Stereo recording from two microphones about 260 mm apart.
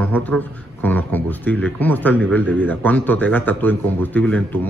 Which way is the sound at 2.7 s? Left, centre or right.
Centre.